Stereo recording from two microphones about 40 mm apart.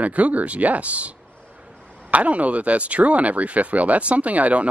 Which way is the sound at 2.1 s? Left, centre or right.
Right.